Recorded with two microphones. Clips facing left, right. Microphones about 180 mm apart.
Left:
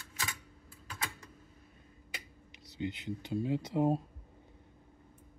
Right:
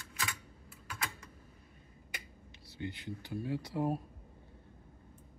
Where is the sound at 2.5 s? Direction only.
20° left (ahead or behind).